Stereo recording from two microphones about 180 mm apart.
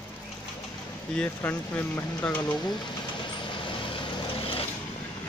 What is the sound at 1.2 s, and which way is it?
Speech, 10° left (ahead or behind).